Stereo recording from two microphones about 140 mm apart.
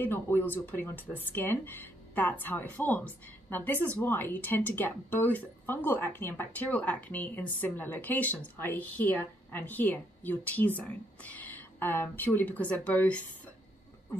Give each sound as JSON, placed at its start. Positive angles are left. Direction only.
{"t": 0.0, "sound": "speech", "side_deg": 15}